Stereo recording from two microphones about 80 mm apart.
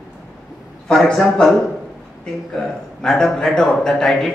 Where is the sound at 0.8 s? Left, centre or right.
Centre.